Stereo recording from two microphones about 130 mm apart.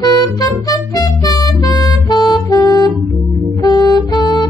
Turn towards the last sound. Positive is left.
turn(degrees=35)  # may be behind; listen again after turning